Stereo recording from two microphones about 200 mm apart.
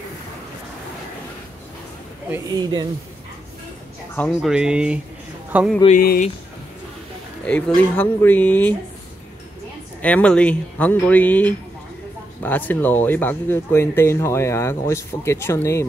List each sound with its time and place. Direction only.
2.3 s speech: 20° right (ahead or behind)
4.3 s a man's voice: 5° right (ahead or behind)
5.9 s speech: 45° left (ahead or behind)
7.4 s speech: 5° left (ahead or behind)
10.0 s speech: 5° left (ahead or behind)